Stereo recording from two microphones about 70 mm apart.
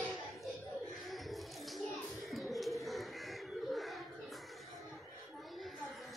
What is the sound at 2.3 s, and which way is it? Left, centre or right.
Bird, centre.